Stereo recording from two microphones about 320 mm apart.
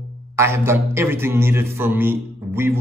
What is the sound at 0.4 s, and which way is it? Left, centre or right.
A man's voice, centre.